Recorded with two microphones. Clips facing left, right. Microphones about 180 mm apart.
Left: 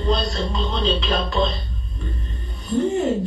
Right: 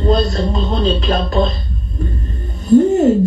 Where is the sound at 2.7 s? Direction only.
45° right (ahead or behind).